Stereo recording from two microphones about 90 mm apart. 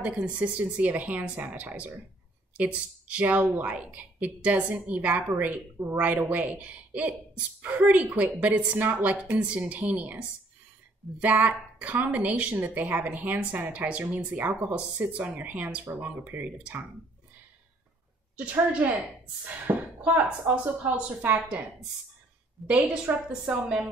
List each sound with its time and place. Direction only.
0.0 s a woman's voice: 15° right (ahead or behind)
18.3 s a woman's voice: 15° right (ahead or behind)
22.7 s a woman's voice: 15° right (ahead or behind)